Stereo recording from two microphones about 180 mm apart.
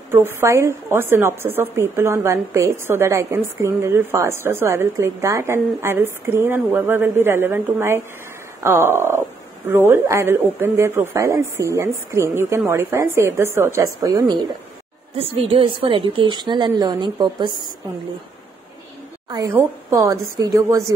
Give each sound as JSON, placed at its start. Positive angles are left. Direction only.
{"t": 0.1, "sound": "speech", "side_deg": -15}
{"t": 15.1, "sound": "a woman's voice", "side_deg": -30}
{"t": 19.2, "sound": "speech", "side_deg": -20}